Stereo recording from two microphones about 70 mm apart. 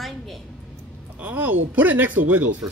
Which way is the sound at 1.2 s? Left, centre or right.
Right.